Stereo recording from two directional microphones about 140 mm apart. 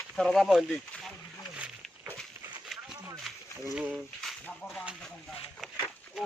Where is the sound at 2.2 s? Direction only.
Centre (ahead or behind).